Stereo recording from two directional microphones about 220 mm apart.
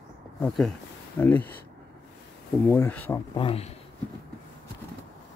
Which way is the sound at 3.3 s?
25° left (ahead or behind).